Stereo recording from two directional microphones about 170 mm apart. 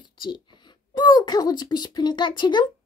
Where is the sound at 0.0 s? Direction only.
25° left (ahead or behind).